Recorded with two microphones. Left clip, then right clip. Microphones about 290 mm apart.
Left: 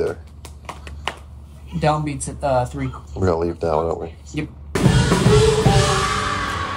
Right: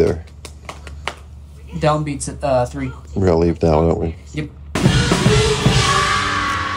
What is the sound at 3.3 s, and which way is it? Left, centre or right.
Speech, right.